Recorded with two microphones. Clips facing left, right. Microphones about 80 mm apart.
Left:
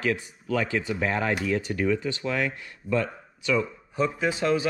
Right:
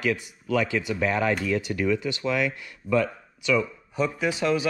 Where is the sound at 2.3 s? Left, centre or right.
Left.